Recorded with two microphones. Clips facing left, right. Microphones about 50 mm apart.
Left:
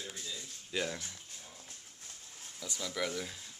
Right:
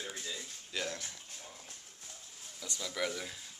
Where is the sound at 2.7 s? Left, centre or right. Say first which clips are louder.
Even; centre.